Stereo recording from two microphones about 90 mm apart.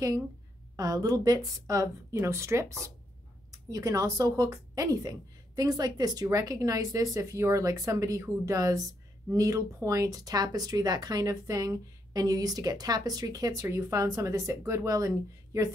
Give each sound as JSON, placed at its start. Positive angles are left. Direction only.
{"t": 0.7, "sound": "speech", "side_deg": -45}